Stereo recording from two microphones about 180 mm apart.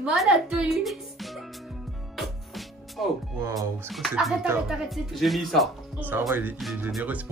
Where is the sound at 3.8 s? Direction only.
Centre (ahead or behind).